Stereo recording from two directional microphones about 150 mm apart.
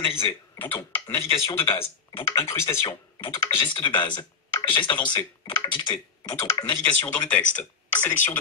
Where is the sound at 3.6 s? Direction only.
35° left (ahead or behind).